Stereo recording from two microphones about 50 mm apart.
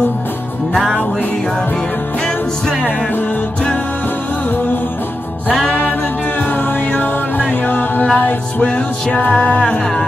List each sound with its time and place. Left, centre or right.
5.7 s music: left